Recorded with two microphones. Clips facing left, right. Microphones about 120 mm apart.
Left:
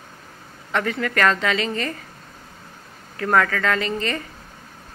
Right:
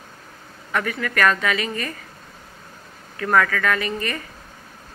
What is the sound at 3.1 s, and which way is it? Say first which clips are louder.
A woman's voice: even; 25° left (ahead or behind).